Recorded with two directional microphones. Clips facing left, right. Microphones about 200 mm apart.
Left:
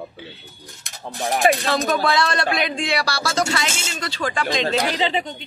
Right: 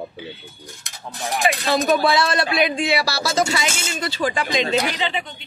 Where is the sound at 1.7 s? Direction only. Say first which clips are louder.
Right 2 dB; 10° right (ahead or behind).